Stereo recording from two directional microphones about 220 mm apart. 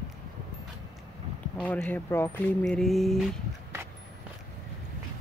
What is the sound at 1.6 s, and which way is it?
Speech, 5° left (ahead or behind).